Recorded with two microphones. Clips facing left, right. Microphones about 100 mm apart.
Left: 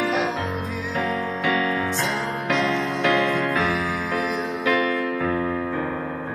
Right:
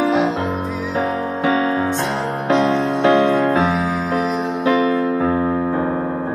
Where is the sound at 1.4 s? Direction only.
30° right (ahead or behind).